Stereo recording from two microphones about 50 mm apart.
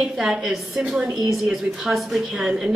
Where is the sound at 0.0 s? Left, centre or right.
Centre.